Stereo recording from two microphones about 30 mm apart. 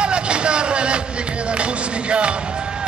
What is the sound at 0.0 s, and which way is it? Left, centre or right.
Music, right.